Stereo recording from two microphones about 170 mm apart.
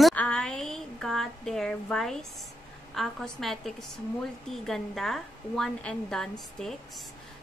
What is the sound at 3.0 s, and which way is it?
A woman's voice, centre (ahead or behind).